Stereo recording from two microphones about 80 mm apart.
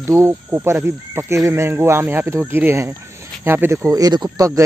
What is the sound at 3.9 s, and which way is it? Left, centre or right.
Speech, right.